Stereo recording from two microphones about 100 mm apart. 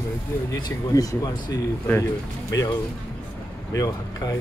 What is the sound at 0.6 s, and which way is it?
Speech, 40° left (ahead or behind).